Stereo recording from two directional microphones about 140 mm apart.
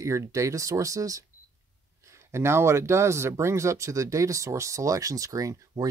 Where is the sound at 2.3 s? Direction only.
20° right (ahead or behind).